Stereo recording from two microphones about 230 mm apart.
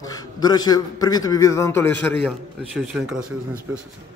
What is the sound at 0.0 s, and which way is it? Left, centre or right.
A man's voice, centre.